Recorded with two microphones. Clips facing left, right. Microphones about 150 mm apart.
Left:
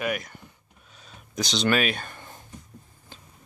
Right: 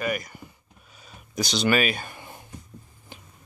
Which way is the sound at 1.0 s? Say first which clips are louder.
Right 1 dB; 5° right (ahead or behind).